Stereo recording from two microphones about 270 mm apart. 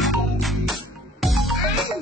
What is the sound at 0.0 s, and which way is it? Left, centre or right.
Music, centre.